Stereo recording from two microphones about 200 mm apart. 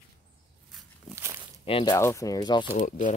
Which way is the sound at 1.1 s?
15° right (ahead or behind).